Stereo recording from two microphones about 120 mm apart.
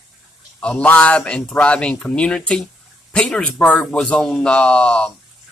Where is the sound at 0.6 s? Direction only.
10° left (ahead or behind).